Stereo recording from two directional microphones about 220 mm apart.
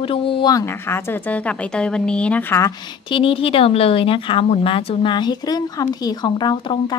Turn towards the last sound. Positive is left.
turn(degrees=20)  # may be behind; listen again after turning